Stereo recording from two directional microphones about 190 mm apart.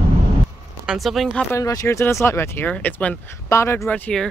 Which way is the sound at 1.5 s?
20° left (ahead or behind).